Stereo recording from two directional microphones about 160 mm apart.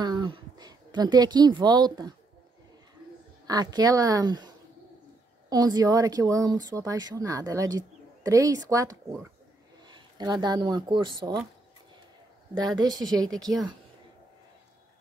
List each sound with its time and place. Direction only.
0.0 s speech: 25° right (ahead or behind)
3.4 s speech: 25° right (ahead or behind)
5.5 s speech: 25° right (ahead or behind)
12.8 s speech: 25° right (ahead or behind)